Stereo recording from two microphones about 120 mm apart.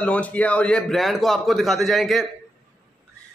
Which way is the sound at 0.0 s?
10° left (ahead or behind).